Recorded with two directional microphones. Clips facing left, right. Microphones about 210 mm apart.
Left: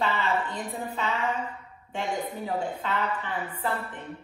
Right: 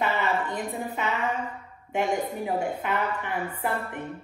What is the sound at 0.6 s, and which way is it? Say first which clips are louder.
A woman's voice: right 2 dB; 20° right (ahead or behind).